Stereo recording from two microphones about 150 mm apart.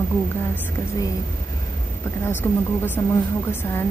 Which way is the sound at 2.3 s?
10° left (ahead or behind).